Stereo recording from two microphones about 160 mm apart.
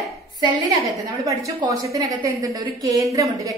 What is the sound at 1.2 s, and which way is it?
A woman's voice, 20° right (ahead or behind).